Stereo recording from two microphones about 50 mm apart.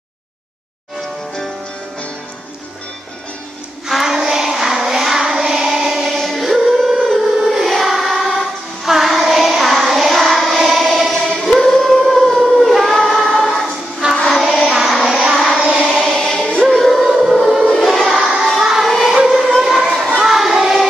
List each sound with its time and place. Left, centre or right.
3.9 s child singing: centre
6.2 s music: centre
7.0 s choir: centre
14.3 s child singing: centre
15.5 s child singing: centre
16.0 s music: centre
16.3 s music: centre
16.6 s music: centre
17.2 s a sound: centre
18.2 s child singing: centre
18.9 s child singing: centre
19.1 s a sound: centre
20.2 s child singing: centre